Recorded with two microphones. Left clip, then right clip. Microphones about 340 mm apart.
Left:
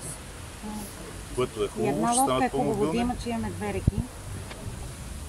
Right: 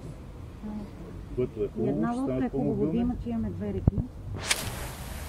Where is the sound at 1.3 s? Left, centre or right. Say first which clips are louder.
Left 2 dB; left.